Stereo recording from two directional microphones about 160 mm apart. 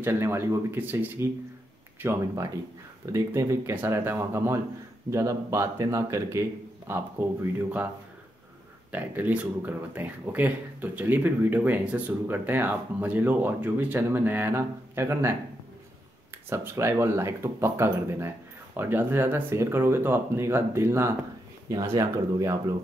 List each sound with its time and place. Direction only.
0.0 s speech: 15° right (ahead or behind)
8.9 s speech: 10° right (ahead or behind)
16.4 s speech: 15° right (ahead or behind)